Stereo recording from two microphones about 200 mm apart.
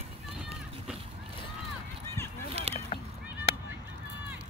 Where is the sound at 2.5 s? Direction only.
30° right (ahead or behind).